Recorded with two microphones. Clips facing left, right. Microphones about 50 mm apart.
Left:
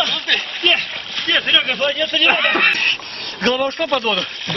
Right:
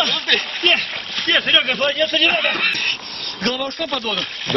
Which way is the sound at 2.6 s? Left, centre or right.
Left.